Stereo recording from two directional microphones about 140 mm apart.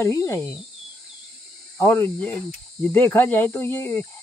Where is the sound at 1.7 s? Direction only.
15° left (ahead or behind).